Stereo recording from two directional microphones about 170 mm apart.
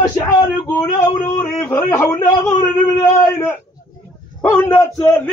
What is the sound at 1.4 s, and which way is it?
A man's voice, 10° left (ahead or behind).